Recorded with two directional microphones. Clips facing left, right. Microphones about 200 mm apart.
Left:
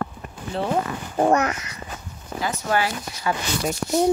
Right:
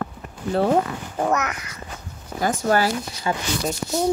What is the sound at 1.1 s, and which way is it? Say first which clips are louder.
Speech: left 4 dB; 30° left (ahead or behind).